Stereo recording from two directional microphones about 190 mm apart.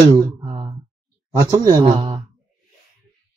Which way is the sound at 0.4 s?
25° right (ahead or behind).